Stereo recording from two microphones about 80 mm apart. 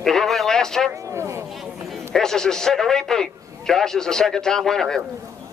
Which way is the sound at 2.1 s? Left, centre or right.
Centre.